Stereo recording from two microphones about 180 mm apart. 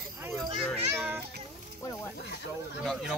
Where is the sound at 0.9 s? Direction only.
10° right (ahead or behind).